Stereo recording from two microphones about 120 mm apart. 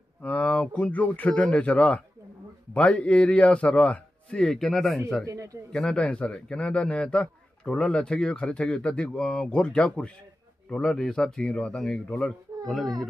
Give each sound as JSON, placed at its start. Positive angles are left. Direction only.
{"t": 0.2, "sound": "a man's voice", "side_deg": 10}
{"t": 5.2, "sound": "a man's voice", "side_deg": -25}
{"t": 5.7, "sound": "a man's voice", "side_deg": 5}